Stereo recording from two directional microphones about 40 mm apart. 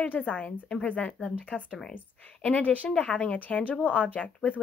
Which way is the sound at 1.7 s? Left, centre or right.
Centre.